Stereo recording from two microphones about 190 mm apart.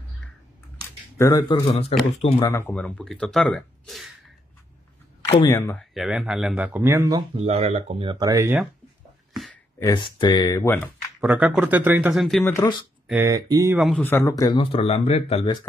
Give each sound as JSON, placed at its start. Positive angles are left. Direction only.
{"t": 1.1, "sound": "speech", "side_deg": 15}
{"t": 1.9, "sound": "speech", "side_deg": 30}
{"t": 2.4, "sound": "speech", "side_deg": 15}
{"t": 2.7, "sound": "speech", "side_deg": 5}
{"t": 5.5, "sound": "speech", "side_deg": 15}
{"t": 5.8, "sound": "speech", "side_deg": 0}
{"t": 7.3, "sound": "speech", "side_deg": -35}
{"t": 9.8, "sound": "speech", "side_deg": 20}
{"t": 11.1, "sound": "speech", "side_deg": -5}
{"t": 12.4, "sound": "speech", "side_deg": 15}
{"t": 13.2, "sound": "speech", "side_deg": -20}
{"t": 13.7, "sound": "speech", "side_deg": 0}
{"t": 14.0, "sound": "speech", "side_deg": 15}